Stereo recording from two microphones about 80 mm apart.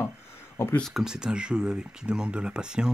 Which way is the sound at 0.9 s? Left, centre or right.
Centre.